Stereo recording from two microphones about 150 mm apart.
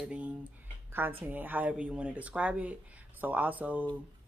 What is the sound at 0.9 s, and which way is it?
Speech, 15° right (ahead or behind).